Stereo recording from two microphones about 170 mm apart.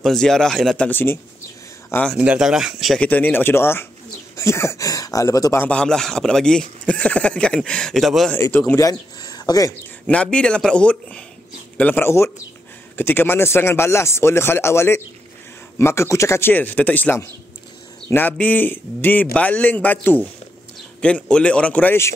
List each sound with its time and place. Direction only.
0.0 s speech: 5° left (ahead or behind)
2.1 s speech: 5° right (ahead or behind)
8.4 s speech: 10° left (ahead or behind)
9.2 s a sound: 20° left (ahead or behind)
10.0 s speech: 5° left (ahead or behind)